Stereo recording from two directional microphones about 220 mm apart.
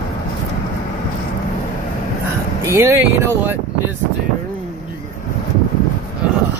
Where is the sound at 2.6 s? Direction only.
15° right (ahead or behind).